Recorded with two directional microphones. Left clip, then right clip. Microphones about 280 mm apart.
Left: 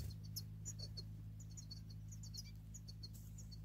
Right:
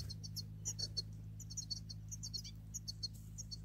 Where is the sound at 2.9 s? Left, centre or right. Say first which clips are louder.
Right 13 dB; right.